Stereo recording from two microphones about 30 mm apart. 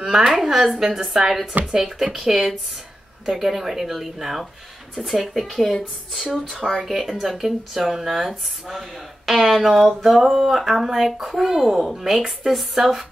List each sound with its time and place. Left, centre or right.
0.0 s speech: centre
0.7 s speech: centre
6.1 s speech: centre